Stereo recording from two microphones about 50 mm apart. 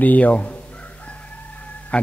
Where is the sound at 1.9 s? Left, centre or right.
Left.